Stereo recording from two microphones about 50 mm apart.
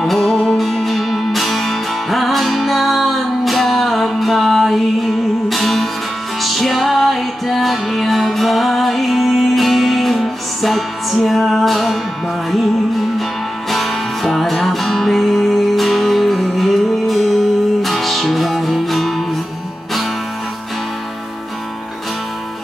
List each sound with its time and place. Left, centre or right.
0.0 s music: centre
13.7 s music: centre